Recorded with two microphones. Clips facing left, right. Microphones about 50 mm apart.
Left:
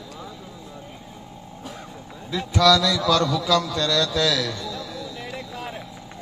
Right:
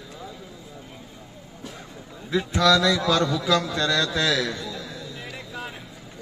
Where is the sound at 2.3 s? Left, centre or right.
Right.